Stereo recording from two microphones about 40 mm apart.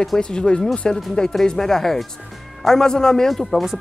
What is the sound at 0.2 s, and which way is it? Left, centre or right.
Speech, left.